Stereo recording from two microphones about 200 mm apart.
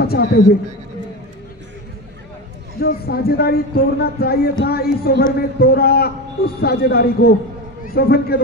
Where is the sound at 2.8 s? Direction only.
50° left (ahead or behind).